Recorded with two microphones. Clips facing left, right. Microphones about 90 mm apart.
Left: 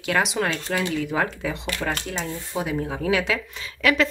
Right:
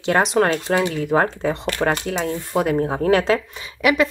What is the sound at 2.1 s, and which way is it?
Speech, 60° right (ahead or behind).